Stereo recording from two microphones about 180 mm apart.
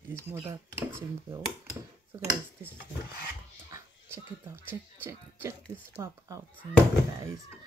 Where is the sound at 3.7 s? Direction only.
15° right (ahead or behind).